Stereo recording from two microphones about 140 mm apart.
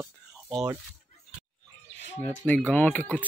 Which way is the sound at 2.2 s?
10° left (ahead or behind).